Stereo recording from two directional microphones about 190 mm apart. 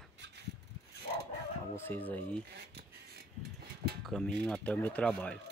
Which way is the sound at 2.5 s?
60° right (ahead or behind).